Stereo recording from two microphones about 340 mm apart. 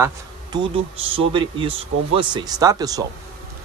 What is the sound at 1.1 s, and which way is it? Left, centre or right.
Speech, centre.